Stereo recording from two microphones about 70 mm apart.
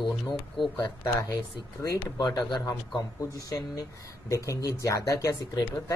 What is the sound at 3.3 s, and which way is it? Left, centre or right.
Speech, left.